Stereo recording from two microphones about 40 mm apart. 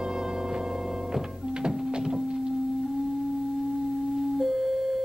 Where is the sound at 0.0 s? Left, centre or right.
Centre.